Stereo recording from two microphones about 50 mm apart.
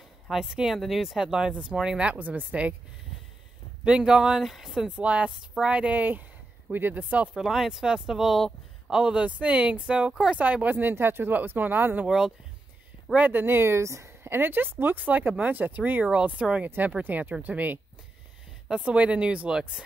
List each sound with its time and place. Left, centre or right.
0.3 s speech: centre; by 2.7 s right
4.0 s speech: centre
4.7 s speech: right
5.9 s speech: right
7.3 s speech: centre
8.9 s speech: centre
10.8 s speech: right
13.3 s speech: right
16.1 s speech: right
16.6 s speech: right
18.7 s speech: right